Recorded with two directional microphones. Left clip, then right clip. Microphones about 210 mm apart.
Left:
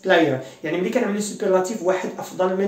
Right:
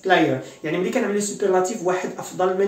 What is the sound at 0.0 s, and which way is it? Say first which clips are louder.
Speech: left 1 dB; 15° left (ahead or behind).